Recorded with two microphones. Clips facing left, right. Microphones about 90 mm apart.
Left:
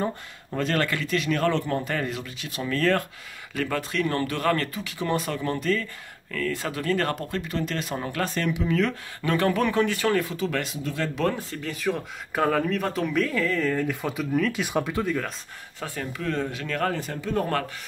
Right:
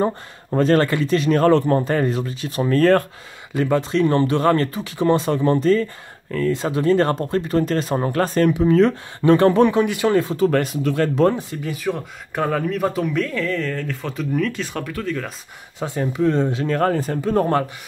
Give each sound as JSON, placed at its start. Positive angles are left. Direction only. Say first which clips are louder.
{"t": 0.0, "sound": "speech", "louder": "right 7 dB", "side_deg": -35}
{"t": 3.5, "sound": "speech", "louder": "right 8 dB", "side_deg": -20}
{"t": 9.7, "sound": "speech", "louder": "right 5 dB", "side_deg": -15}
{"t": 10.3, "sound": "speech", "louder": "right 10 dB", "side_deg": -45}
{"t": 11.7, "sound": "speech", "louder": "right 2 dB", "side_deg": 0}
{"t": 14.6, "sound": "speech", "louder": "left 1 dB", "side_deg": 15}
{"t": 15.8, "sound": "speech", "louder": "right 11 dB", "side_deg": -20}